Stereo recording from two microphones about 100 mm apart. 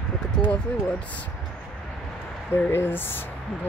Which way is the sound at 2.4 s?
20° left (ahead or behind).